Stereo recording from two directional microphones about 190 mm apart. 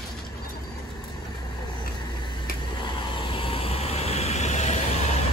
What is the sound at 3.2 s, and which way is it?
Vehicle, 30° left (ahead or behind).